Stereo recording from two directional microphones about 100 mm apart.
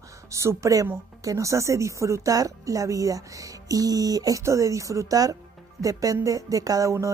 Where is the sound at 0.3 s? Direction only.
30° right (ahead or behind).